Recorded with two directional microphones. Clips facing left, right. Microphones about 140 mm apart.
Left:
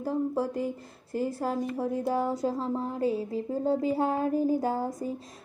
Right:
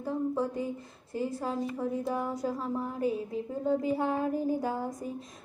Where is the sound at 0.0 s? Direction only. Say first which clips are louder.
Left 2 dB; 5° left (ahead or behind).